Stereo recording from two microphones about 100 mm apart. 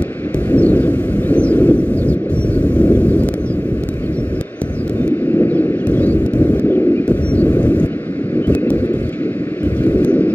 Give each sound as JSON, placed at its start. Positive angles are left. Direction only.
{"t": 0.5, "sound": "thunder", "side_deg": 15}
{"t": 5.4, "sound": "a sound", "side_deg": 15}
{"t": 9.8, "sound": "vehicle", "side_deg": 15}